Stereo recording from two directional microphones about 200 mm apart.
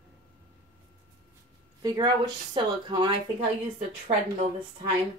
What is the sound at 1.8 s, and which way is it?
Speech, 20° right (ahead or behind).